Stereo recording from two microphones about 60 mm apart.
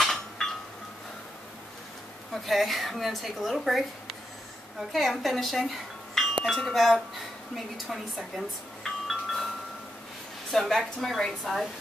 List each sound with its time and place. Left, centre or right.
0.0 s a sound: centre
2.3 s speech: centre
9.0 s chime: centre
10.5 s speech: centre